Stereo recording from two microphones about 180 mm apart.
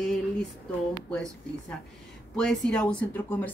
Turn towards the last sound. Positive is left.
turn(degrees=10)  # may be behind; listen again after turning